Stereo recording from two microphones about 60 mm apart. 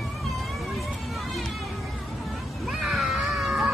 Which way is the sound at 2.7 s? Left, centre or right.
Centre.